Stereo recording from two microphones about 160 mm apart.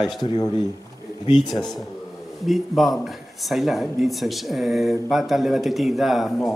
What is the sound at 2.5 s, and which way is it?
Speech, centre (ahead or behind).